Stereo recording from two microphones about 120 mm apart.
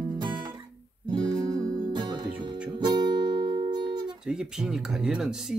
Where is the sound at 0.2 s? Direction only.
35° right (ahead or behind).